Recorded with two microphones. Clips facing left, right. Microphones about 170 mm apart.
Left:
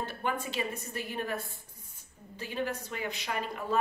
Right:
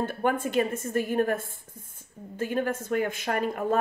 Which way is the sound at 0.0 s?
50° right (ahead or behind).